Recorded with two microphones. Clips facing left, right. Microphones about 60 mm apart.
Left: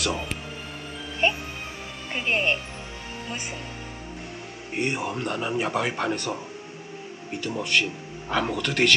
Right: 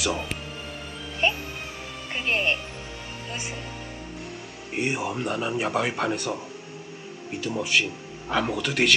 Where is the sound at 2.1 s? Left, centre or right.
Centre.